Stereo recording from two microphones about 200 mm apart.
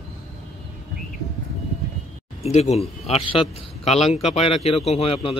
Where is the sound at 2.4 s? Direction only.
30° left (ahead or behind).